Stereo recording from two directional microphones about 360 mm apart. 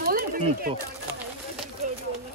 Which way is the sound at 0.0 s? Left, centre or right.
Right.